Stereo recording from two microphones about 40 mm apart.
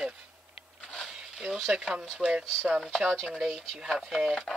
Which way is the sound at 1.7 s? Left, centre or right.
Centre.